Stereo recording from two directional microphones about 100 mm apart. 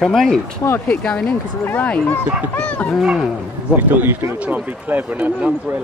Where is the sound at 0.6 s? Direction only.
30° left (ahead or behind).